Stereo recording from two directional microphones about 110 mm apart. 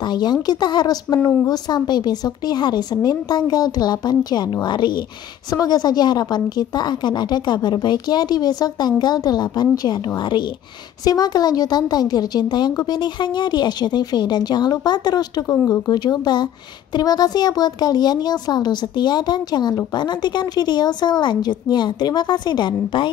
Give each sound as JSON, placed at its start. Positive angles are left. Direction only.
{"t": 0.0, "sound": "speech", "side_deg": 40}
{"t": 15.4, "sound": "speech", "side_deg": 20}
{"t": 15.9, "sound": "speech", "side_deg": 40}